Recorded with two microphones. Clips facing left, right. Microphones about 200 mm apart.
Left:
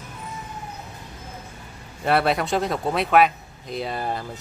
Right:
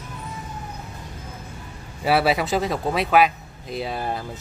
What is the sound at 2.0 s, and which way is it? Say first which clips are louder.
Speech: right 1 dB; 5° right (ahead or behind).